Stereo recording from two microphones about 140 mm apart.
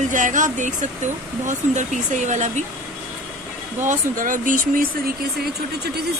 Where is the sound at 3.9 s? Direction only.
70° right (ahead or behind).